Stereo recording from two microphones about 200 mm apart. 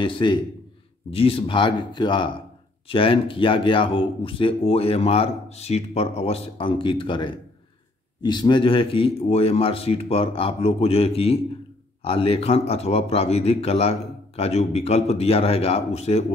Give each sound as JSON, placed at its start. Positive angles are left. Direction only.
{"t": 0.0, "sound": "a man's voice", "side_deg": 25}